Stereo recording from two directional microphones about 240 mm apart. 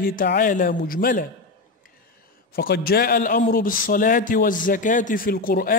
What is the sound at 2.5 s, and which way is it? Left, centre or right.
A man's voice, left.